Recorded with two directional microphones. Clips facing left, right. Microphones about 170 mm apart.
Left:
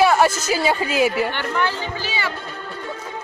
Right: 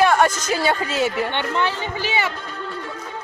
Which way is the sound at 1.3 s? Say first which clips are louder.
Right 1 dB; 20° right (ahead or behind).